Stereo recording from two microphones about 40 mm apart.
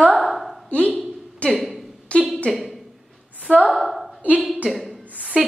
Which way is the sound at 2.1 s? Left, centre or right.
Left.